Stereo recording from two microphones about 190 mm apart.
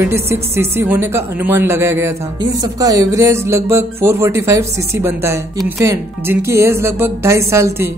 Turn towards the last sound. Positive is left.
turn(degrees=-15)  # may be behind; listen again after turning